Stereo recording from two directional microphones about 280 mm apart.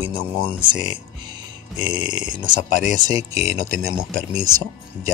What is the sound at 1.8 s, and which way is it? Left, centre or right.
Speech, centre.